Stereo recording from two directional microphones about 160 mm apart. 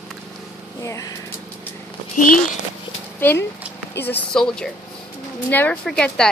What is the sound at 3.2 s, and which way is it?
Speech, 15° left (ahead or behind).